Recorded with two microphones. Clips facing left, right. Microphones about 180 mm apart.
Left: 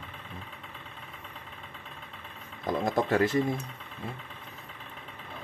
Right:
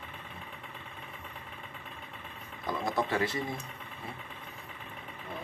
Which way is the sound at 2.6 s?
50° left (ahead or behind).